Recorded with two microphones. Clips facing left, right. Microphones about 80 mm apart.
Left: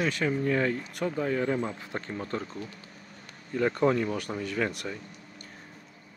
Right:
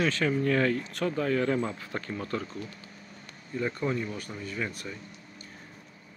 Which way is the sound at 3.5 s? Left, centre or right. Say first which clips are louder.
Left 5 dB; left.